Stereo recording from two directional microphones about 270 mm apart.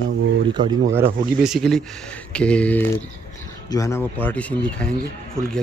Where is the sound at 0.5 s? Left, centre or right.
Centre.